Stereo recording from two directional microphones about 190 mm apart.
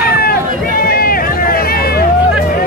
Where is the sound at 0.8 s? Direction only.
50° left (ahead or behind).